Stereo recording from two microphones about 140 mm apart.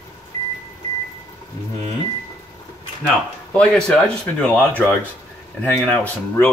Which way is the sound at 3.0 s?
5° left (ahead or behind).